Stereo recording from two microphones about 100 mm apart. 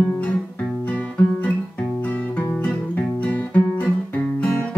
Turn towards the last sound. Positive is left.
turn(degrees=15)  # may be behind; listen again after turning